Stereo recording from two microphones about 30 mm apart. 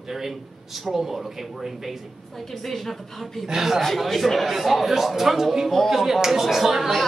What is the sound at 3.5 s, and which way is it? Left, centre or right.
Speech, centre.